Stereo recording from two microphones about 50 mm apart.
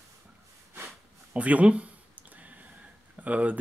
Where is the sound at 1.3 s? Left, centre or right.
Right.